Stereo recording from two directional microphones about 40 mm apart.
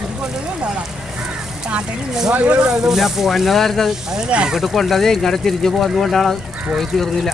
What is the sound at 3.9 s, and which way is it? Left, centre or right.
Speech, centre.